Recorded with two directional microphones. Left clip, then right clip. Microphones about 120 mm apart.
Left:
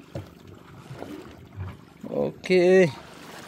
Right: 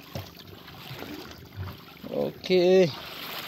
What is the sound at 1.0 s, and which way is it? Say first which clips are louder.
Boat: left 3 dB; 40° right (ahead or behind).